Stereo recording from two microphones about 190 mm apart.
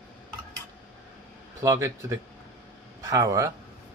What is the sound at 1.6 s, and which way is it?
Speech, 15° right (ahead or behind).